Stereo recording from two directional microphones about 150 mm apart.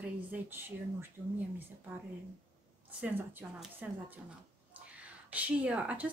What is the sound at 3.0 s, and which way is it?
A woman's voice, 10° right (ahead or behind).